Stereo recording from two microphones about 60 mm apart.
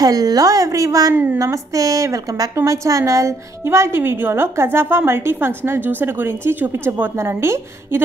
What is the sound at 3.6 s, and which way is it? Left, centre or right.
A woman's voice, right.